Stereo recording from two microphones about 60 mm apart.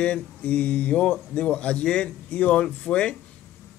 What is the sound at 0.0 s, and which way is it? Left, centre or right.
A man's voice, left.